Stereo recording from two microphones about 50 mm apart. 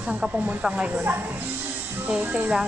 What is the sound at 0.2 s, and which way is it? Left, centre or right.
Speech, centre.